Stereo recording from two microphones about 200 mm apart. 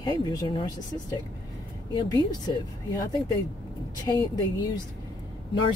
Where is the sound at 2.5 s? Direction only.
25° left (ahead or behind).